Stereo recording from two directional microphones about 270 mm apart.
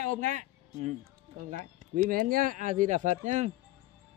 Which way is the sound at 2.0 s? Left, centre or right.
Right.